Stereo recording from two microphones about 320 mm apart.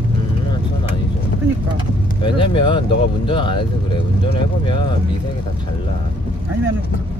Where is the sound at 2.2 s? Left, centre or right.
Centre.